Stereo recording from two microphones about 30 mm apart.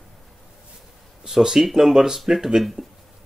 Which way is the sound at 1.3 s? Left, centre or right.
Centre.